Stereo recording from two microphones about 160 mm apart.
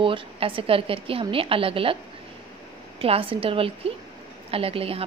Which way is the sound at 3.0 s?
35° right (ahead or behind).